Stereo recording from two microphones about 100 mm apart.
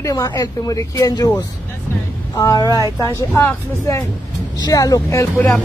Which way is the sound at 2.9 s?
35° left (ahead or behind).